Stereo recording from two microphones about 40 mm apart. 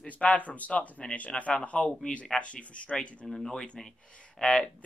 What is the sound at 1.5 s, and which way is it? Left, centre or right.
Speech, left.